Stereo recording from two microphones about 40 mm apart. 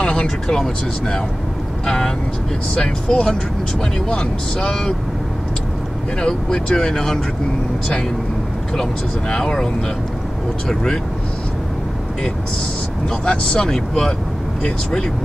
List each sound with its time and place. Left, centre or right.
0.0 s speech: centre
6.2 s speech: left
9.3 s speech: left
10.7 s speech: centre
13.2 s speech: centre